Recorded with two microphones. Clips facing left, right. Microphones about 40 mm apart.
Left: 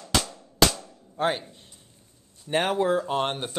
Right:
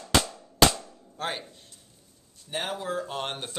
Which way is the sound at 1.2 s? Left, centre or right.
Centre.